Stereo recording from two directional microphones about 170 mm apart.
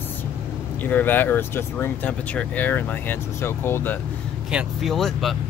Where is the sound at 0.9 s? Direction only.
10° left (ahead or behind).